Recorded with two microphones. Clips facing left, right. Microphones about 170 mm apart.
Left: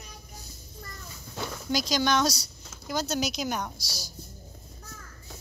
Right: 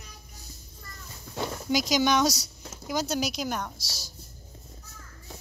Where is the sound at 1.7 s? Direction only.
15° right (ahead or behind).